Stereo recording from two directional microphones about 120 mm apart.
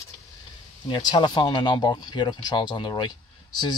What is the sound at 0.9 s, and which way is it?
Speech, 40° left (ahead or behind).